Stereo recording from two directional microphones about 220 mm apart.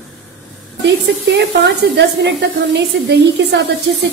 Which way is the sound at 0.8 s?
50° right (ahead or behind).